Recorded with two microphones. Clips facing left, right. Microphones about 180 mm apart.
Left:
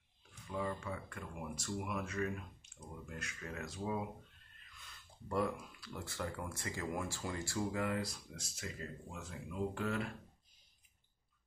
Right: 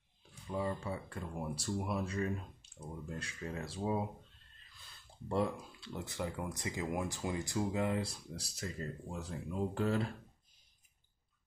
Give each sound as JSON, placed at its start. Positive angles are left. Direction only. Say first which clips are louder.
{"t": 0.3, "sound": "speech", "louder": "right 3 dB", "side_deg": -30}